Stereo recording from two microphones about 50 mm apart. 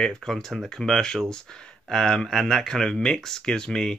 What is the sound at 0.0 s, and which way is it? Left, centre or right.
Speech, centre.